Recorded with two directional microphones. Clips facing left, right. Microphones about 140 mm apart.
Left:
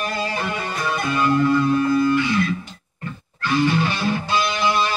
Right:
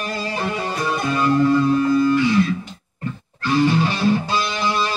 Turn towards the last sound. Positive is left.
turn(degrees=-35)  # may be behind; listen again after turning